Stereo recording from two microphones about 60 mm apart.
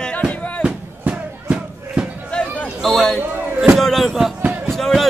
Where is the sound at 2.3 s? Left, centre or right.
Centre.